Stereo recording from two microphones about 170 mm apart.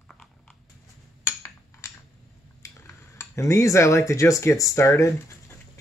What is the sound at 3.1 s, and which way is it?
Speech, 15° left (ahead or behind).